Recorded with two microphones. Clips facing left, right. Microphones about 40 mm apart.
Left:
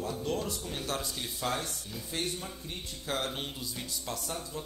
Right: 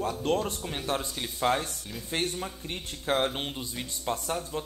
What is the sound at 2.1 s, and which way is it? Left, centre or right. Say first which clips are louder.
Speech: right 5 dB; right.